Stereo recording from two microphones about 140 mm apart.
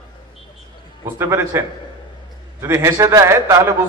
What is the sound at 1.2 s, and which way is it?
A man's voice, 20° right (ahead or behind).